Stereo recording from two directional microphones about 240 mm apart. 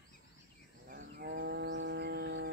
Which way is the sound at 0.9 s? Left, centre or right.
Right.